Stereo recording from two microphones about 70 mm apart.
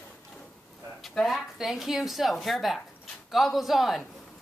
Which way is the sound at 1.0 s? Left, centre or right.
Centre.